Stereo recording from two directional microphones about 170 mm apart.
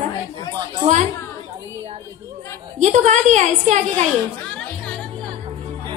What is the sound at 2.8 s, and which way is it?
A woman's voice, 45° right (ahead or behind).